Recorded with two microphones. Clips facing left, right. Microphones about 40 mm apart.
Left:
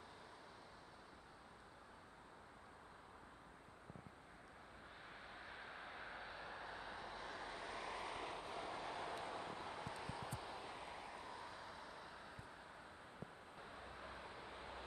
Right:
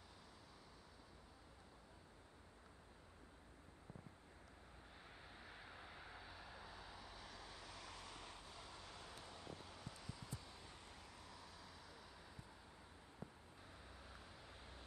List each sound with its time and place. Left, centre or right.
5.0 s vehicle: centre
13.6 s vehicle: left